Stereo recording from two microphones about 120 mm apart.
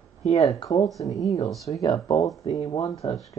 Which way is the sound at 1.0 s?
30° left (ahead or behind).